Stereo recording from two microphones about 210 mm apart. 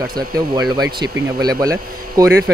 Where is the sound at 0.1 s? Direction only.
20° right (ahead or behind).